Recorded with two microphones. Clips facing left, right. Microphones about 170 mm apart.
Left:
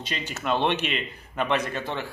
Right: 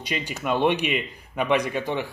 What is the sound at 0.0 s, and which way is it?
A man's voice, 10° right (ahead or behind).